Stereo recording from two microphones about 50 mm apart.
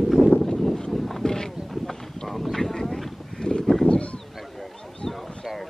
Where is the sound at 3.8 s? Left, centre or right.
Left.